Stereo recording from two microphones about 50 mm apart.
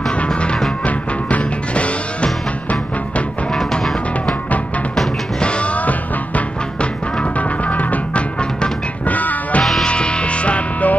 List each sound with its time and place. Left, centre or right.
0.1 s music: left
3.5 s music: centre
5.4 s music: left
8.4 s music: centre
9.0 s music: left
9.8 s music: centre